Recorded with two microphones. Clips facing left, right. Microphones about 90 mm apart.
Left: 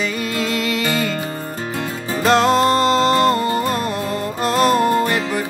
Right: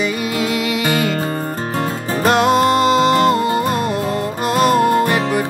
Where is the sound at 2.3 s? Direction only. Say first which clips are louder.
Right 1 dB; 10° right (ahead or behind).